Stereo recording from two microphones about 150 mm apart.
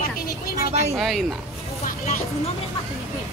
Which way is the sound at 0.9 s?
Centre (ahead or behind).